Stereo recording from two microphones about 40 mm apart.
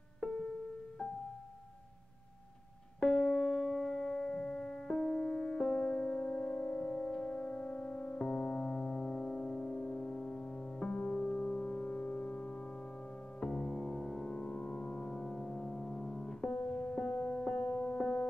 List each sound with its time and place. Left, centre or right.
0.2 s music: centre
3.1 s music: centre
4.3 s music: left
4.8 s music: centre
11.1 s music: centre
16.5 s music: left